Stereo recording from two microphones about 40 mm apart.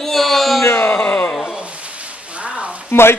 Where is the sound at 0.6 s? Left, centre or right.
Left.